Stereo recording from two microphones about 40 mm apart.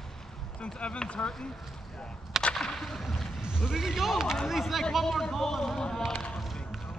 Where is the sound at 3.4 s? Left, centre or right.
Centre.